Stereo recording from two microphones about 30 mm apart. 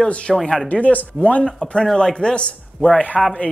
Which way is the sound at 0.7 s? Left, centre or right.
Left.